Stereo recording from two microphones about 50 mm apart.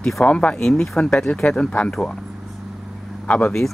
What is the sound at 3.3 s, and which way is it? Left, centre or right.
Speech, centre.